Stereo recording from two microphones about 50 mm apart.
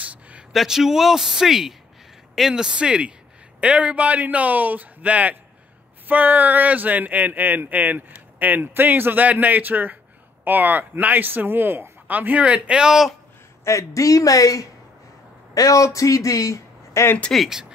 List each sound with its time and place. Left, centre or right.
0.0 s a sound: right
0.5 s a man's voice: centre; by 12.9 s right
13.7 s speech: left
15.7 s speech: left
17.5 s speech: centre